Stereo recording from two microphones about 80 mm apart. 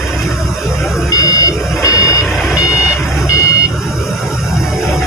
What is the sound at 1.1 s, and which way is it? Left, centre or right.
Car alarm, left.